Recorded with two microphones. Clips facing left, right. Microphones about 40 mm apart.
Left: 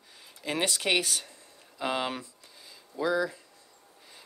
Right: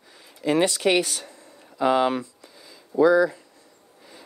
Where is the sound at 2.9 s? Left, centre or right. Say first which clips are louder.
Right 13 dB; right.